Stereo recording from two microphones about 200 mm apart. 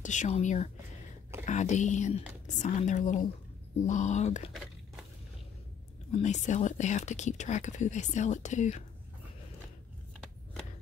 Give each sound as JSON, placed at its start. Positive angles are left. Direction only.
{"t": 0.0, "sound": "speech", "side_deg": 35}
{"t": 6.1, "sound": "speech", "side_deg": 35}